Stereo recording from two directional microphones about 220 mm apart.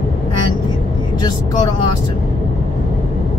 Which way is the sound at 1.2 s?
20° left (ahead or behind).